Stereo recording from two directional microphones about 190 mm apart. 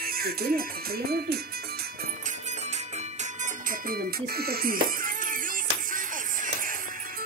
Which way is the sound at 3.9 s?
55° right (ahead or behind).